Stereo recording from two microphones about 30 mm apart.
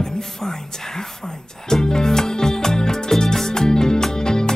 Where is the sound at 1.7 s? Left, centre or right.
Centre.